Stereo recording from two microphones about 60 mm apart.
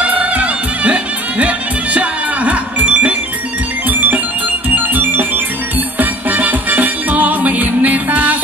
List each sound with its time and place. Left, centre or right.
0.0 s music: right
4.9 s music: right